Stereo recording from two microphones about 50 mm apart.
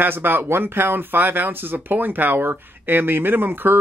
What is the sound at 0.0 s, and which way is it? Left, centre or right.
Speech, right.